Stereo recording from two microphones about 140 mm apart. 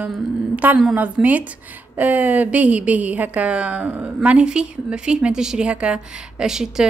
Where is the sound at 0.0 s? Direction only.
10° right (ahead or behind).